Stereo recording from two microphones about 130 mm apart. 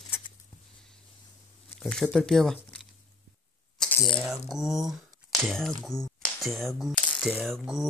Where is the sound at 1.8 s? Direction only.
5° left (ahead or behind).